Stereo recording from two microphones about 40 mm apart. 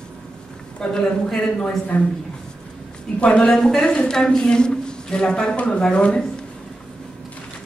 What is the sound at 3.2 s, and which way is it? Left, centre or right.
A woman's voice, left.